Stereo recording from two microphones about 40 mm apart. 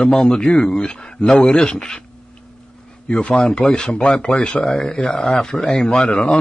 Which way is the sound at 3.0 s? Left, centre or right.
Left.